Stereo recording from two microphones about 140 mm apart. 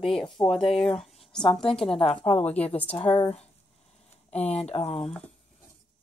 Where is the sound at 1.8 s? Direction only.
45° left (ahead or behind).